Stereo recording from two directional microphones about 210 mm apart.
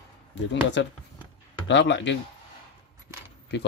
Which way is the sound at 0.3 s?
60° left (ahead or behind).